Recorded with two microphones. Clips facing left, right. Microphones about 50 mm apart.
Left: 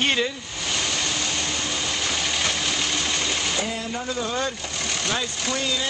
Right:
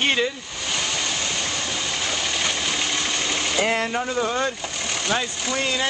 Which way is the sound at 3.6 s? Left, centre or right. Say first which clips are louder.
Right 7 dB; right.